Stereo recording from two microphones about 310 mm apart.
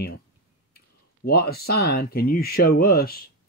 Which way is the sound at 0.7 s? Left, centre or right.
Left.